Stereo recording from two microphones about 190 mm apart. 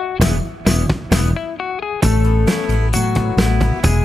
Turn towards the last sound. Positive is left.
turn(degrees=0)  # may be behind; listen again after turning